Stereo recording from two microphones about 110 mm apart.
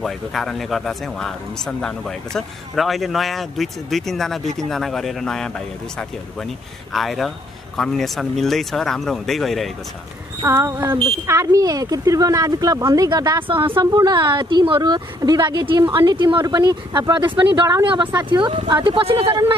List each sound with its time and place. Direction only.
0.0 s speech: centre (ahead or behind)
6.9 s speech: centre (ahead or behind)
10.4 s a sound: 25° right (ahead or behind)
11.2 s speech: 25° right (ahead or behind)
13.5 s speech: 50° right (ahead or behind)